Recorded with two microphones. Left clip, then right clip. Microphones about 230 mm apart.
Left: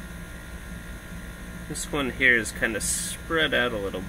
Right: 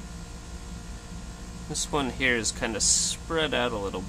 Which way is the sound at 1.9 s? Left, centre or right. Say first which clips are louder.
Left 5 dB; centre.